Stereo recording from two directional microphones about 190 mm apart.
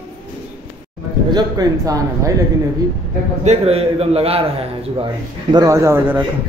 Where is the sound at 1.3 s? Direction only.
20° right (ahead or behind).